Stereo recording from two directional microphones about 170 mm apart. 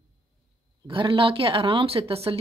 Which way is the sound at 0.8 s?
30° right (ahead or behind).